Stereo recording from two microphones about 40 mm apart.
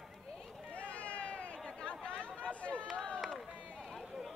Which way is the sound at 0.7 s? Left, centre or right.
Left.